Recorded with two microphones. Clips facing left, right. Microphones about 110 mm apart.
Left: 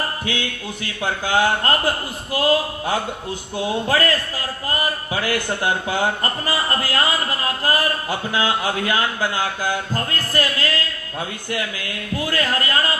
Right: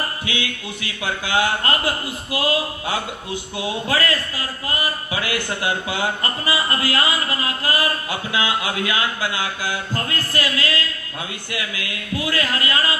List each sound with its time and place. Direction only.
0.2 s music: 40° left (ahead or behind)
1.0 s a man's voice: 40° left (ahead or behind)
12.2 s a man's voice: 40° left (ahead or behind)